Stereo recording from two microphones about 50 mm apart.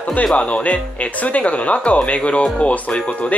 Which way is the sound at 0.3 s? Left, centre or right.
Left.